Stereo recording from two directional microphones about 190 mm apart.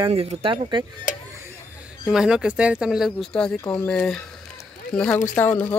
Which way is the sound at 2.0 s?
5° right (ahead or behind).